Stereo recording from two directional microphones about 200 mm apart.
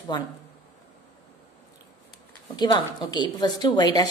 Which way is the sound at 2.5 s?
20° left (ahead or behind).